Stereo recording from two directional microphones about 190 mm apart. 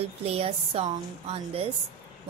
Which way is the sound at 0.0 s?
30° right (ahead or behind).